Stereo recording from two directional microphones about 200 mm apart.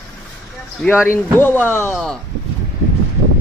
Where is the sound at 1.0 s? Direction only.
10° left (ahead or behind).